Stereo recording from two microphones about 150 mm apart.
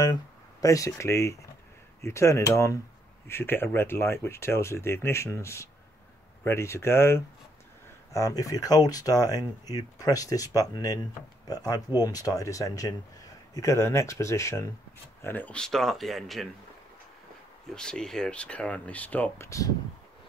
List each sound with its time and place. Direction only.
0.0 s speech: 25° left (ahead or behind); by 16.4 s centre (ahead or behind)
17.7 s speech: 5° left (ahead or behind)